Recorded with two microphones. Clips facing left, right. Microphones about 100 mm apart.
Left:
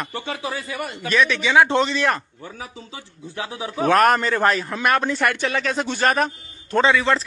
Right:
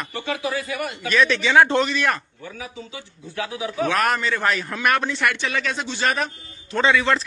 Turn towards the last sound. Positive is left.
turn(degrees=25)  # may be behind; listen again after turning